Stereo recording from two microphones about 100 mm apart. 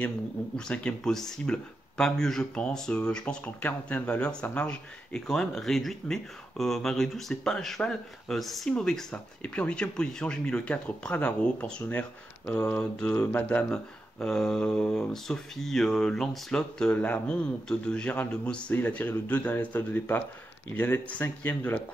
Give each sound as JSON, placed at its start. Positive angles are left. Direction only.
{"t": 0.6, "sound": "speech", "side_deg": 10}